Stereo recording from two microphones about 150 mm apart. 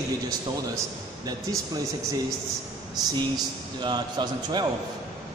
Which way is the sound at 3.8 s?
30° right (ahead or behind).